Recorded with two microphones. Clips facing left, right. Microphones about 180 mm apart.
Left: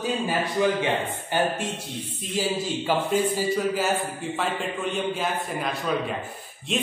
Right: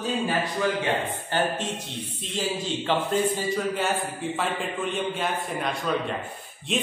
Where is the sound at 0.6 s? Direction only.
15° left (ahead or behind).